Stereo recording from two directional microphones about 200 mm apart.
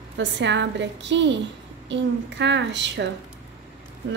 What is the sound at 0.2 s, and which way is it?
A woman's voice, 65° right (ahead or behind).